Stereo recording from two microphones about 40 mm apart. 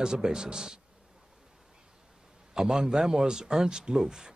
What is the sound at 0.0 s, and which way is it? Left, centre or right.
Speech, centre.